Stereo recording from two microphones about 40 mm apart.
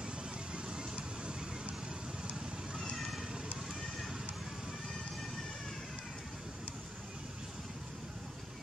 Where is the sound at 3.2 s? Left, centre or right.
Centre.